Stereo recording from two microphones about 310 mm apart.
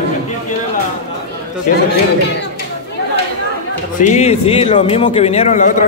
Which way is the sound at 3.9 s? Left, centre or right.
Left.